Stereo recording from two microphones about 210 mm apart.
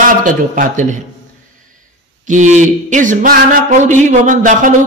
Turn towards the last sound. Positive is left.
turn(degrees=-40)  # may be behind; listen again after turning